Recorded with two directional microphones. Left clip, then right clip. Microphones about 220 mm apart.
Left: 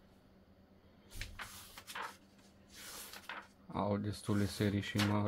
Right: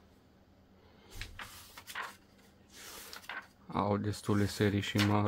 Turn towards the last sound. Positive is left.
turn(degrees=-20)  # may be behind; listen again after turning